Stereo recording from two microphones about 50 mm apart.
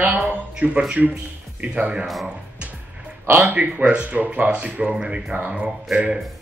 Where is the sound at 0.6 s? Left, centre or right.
Right.